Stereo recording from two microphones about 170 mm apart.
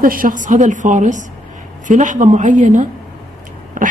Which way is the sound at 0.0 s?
55° right (ahead or behind).